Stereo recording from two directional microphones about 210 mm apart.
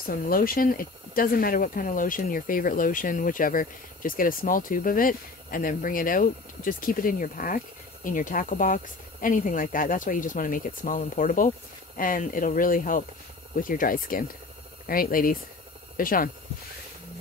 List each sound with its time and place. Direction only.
0.1 s speech: 45° left (ahead or behind)